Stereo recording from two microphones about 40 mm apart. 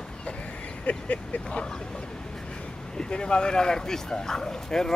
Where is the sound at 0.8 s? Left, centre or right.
Left.